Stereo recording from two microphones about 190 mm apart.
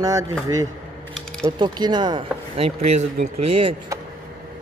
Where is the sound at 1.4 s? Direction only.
20° right (ahead or behind).